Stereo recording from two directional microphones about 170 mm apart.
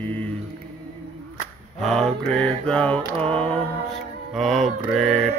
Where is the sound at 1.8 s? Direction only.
Centre (ahead or behind).